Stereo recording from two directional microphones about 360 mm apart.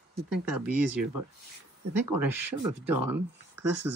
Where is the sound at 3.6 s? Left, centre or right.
Centre.